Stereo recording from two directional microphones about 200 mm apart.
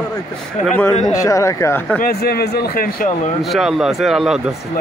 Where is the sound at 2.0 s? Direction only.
50° left (ahead or behind).